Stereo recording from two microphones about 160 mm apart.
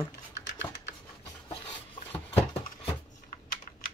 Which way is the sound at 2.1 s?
35° left (ahead or behind).